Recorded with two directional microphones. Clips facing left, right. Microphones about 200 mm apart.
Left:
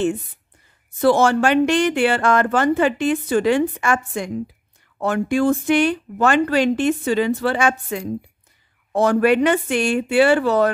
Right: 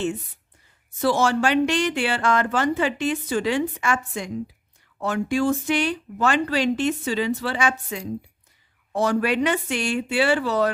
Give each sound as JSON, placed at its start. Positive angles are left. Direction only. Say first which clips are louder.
{"t": 1.0, "sound": "speech", "louder": "left 5 dB", "side_deg": 55}